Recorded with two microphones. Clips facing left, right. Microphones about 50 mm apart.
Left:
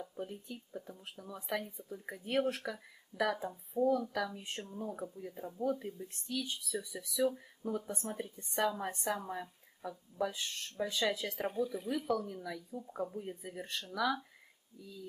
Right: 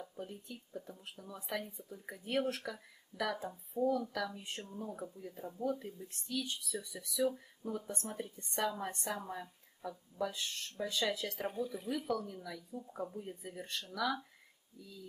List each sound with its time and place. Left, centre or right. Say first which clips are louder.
0.1 s a woman's voice: left 3 dB; centre